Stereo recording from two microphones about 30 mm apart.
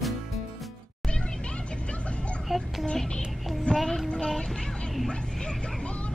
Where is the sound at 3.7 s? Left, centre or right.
Centre.